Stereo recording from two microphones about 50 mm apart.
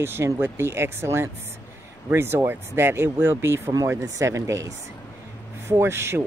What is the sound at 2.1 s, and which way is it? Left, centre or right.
Speech, right.